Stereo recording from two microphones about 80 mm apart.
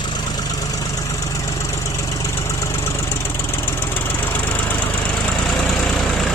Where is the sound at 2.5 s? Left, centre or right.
Left.